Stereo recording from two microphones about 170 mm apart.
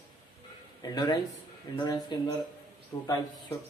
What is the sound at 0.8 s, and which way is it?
Speech, 25° left (ahead or behind).